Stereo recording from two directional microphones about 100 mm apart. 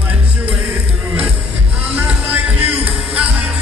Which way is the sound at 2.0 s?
15° right (ahead or behind).